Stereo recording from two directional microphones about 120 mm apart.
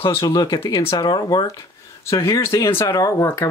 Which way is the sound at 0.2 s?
30° left (ahead or behind).